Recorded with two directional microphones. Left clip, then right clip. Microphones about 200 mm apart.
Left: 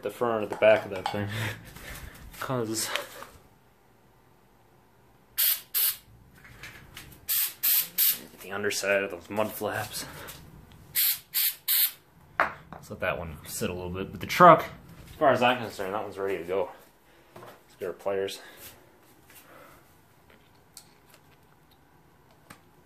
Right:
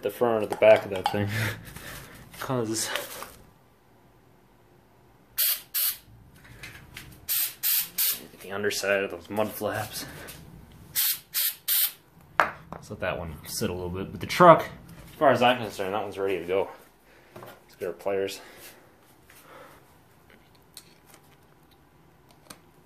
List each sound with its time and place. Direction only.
0.0 s speech: 15° right (ahead or behind)
2.3 s speech: 5° right (ahead or behind)
5.3 s spray: 5° right (ahead or behind)
6.9 s a sound: centre (ahead or behind)
10.9 s spray: 15° right (ahead or behind)
12.8 s speech: centre (ahead or behind)
15.1 s speech: 15° right (ahead or behind)
17.7 s speech: 10° right (ahead or behind)